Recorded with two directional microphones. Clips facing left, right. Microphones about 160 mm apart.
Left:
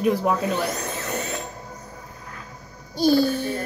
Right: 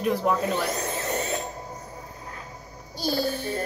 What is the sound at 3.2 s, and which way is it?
Music, 40° right (ahead or behind).